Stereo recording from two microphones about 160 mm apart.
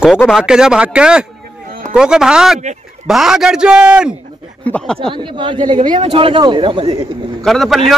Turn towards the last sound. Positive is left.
turn(degrees=0)  # may be behind; listen again after turning